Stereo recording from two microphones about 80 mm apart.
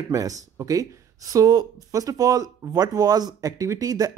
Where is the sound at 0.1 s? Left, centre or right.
Right.